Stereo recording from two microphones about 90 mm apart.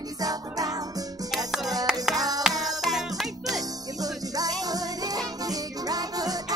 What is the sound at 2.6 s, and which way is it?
Music, centre (ahead or behind).